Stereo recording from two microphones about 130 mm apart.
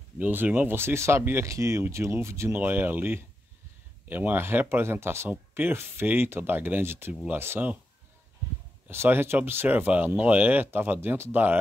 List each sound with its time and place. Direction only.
0.2 s speech: 15° right (ahead or behind)
8.8 s speech: 15° right (ahead or behind)